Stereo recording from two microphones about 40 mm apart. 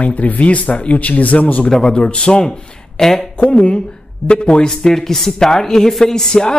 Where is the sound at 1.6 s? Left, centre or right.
Centre.